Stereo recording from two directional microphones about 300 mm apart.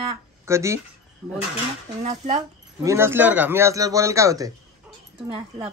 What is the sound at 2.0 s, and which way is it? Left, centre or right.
Speech, right.